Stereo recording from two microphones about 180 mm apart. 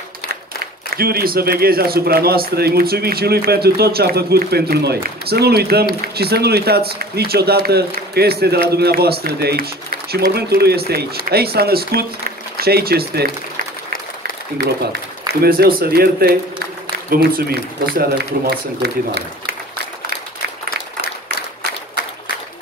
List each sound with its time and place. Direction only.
0.8 s a man's voice: 60° right (ahead or behind)
15.4 s a man's voice: 60° right (ahead or behind)